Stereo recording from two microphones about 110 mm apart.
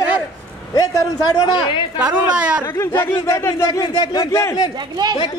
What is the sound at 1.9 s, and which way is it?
Speech, 10° right (ahead or behind).